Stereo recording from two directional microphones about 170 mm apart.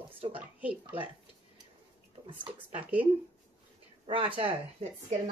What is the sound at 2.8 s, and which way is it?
Speech, 10° right (ahead or behind).